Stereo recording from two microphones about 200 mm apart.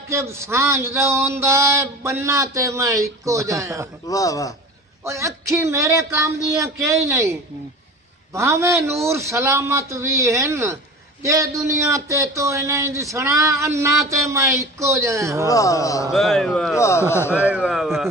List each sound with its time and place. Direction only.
0.1 s speech: 15° right (ahead or behind)
4.1 s speech: 15° left (ahead or behind)
5.0 s speech: 15° right (ahead or behind)
15.4 s speech: 15° left (ahead or behind)
16.1 s speech: centre (ahead or behind)
17.3 s speech: 5° right (ahead or behind)